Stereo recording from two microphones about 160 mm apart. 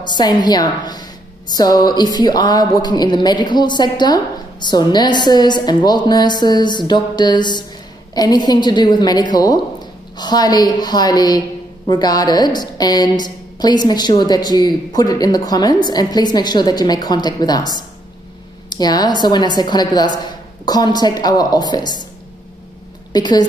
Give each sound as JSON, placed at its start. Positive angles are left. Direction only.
{"t": 0.0, "sound": "a woman's voice", "side_deg": 25}
{"t": 23.1, "sound": "a woman's voice", "side_deg": 25}